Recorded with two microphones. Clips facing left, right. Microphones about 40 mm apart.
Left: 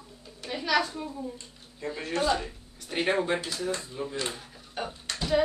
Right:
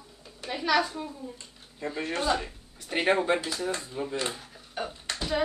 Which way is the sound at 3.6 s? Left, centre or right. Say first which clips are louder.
Even; right.